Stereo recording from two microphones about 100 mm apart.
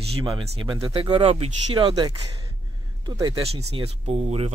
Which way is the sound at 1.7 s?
45° right (ahead or behind).